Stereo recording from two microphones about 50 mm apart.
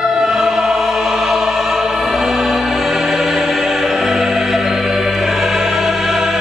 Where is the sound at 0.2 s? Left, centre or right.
Centre.